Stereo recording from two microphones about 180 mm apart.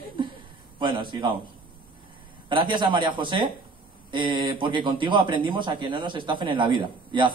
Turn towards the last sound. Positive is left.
turn(degrees=-25)  # may be behind; listen again after turning